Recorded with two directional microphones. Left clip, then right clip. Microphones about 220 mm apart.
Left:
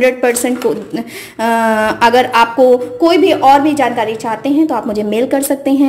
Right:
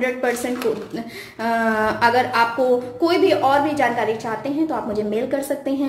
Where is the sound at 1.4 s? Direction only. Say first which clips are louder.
Left 7 dB; 35° left (ahead or behind).